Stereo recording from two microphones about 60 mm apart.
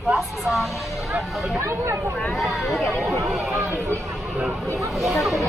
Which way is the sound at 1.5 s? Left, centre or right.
Right.